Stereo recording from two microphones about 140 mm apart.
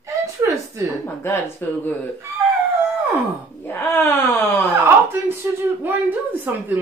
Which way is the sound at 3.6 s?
15° left (ahead or behind).